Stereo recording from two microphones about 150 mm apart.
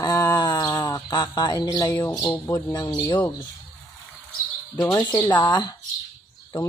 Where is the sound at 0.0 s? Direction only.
25° left (ahead or behind).